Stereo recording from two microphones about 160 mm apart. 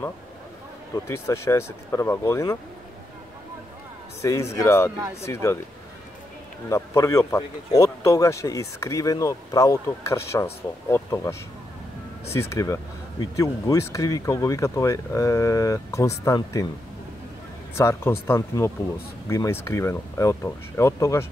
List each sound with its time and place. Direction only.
0.9 s speech: 15° left (ahead or behind)
4.2 s speech: 20° left (ahead or behind)
6.7 s a man's voice: 20° left (ahead or behind)
17.7 s speech: 15° left (ahead or behind)